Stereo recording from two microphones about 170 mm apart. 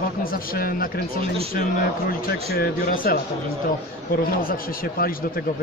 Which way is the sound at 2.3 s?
60° left (ahead or behind).